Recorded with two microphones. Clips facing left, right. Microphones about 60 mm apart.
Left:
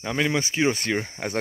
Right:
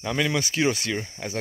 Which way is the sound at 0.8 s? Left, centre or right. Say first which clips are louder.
Left 3 dB; left.